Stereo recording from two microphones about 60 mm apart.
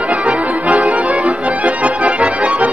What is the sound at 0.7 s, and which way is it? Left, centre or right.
Accordion, right.